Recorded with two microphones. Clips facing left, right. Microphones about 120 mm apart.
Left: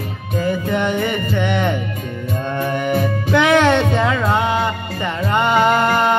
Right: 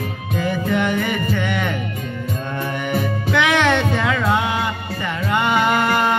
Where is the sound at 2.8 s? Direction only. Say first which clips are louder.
Left 3 dB; 35° left (ahead or behind).